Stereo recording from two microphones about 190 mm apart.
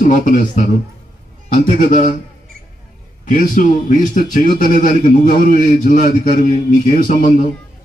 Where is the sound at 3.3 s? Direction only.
45° left (ahead or behind).